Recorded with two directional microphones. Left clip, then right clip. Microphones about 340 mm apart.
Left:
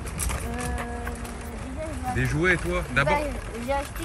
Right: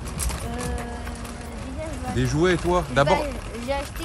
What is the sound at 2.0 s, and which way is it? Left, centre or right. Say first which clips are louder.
Speech: right 1 dB; centre.